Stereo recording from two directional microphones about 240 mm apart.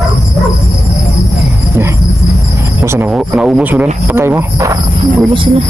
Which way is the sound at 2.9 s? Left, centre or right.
Centre.